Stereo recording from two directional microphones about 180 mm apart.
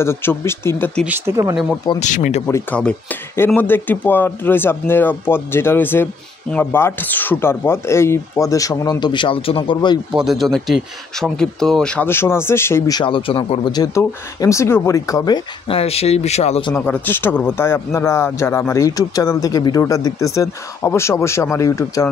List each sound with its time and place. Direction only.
0.0 s speech: 15° left (ahead or behind)
1.0 s speech: 10° right (ahead or behind)
2.0 s speech: 45° left (ahead or behind)
2.4 s speech: 10° left (ahead or behind)
10.1 s speech: centre (ahead or behind); by 16.7 s 35° left (ahead or behind)
16.7 s speech: 10° left (ahead or behind)